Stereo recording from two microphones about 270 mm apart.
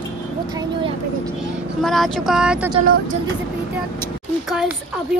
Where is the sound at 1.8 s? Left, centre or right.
Centre.